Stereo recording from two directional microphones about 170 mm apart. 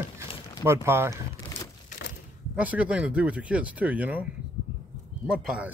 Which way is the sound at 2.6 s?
10° right (ahead or behind).